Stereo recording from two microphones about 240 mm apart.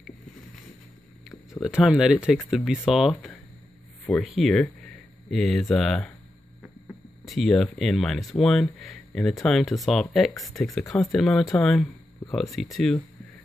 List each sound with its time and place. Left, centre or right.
1.6 s speech: centre